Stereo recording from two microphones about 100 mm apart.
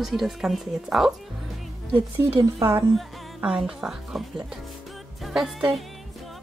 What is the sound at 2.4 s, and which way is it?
Speech, 35° right (ahead or behind).